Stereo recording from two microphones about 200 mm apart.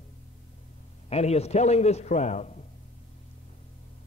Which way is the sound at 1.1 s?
30° left (ahead or behind).